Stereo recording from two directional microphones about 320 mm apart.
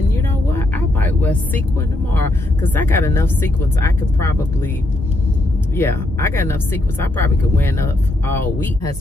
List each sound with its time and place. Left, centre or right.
0.1 s vehicle: centre
2.1 s speech: centre
5.8 s speech: centre